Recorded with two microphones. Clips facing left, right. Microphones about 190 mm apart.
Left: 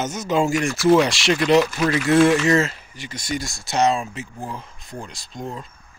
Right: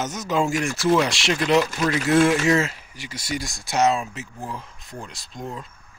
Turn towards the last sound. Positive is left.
turn(degrees=0)  # may be behind; listen again after turning